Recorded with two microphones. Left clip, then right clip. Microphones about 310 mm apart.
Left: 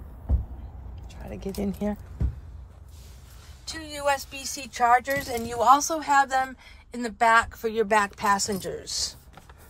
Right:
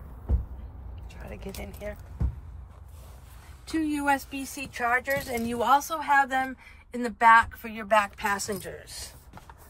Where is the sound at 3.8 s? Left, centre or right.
Left.